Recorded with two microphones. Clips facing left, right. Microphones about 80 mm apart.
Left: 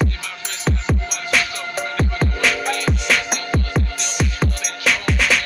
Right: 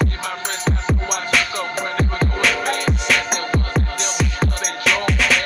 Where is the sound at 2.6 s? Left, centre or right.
Right.